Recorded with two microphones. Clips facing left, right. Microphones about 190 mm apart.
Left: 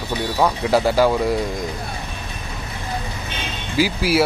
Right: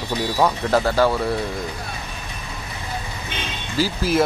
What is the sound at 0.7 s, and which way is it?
Speech, 10° left (ahead or behind).